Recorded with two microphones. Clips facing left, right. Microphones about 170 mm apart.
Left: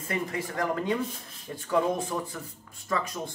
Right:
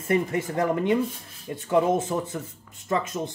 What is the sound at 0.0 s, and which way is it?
Speech, 25° right (ahead or behind).